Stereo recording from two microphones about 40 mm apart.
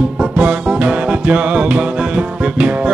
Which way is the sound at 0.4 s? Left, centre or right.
Right.